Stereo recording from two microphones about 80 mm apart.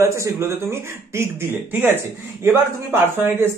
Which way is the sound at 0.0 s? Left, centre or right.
Right.